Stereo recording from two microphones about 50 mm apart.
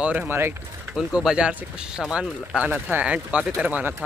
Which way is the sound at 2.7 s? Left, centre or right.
Right.